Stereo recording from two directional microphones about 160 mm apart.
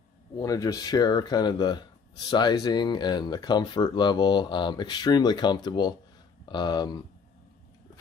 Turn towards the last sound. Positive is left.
turn(degrees=25)  # may be behind; listen again after turning